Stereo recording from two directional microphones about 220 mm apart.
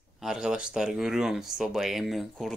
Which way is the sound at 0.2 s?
Centre (ahead or behind).